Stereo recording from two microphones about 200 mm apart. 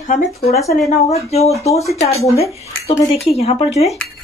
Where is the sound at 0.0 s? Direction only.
35° left (ahead or behind).